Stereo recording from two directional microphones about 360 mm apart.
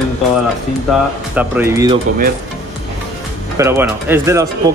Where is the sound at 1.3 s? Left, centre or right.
Centre.